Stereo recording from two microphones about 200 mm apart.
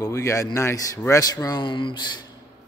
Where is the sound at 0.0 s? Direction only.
15° left (ahead or behind).